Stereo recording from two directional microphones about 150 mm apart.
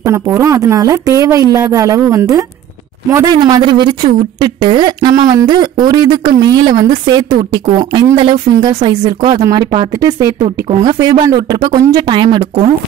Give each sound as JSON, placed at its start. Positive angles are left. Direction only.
{"t": 0.0, "sound": "speech", "side_deg": -20}